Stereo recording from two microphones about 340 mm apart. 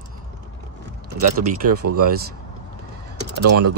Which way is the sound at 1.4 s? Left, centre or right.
Right.